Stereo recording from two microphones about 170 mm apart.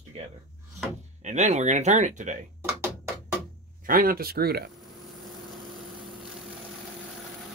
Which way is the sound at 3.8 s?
55° right (ahead or behind).